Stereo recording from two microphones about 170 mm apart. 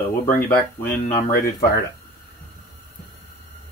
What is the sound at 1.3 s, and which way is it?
Speech, 65° left (ahead or behind).